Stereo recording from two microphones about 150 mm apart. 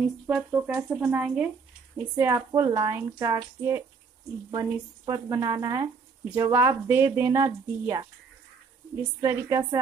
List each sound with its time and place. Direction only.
0.4 s a woman's voice: 15° right (ahead or behind)
9.2 s a woman's voice: 20° right (ahead or behind)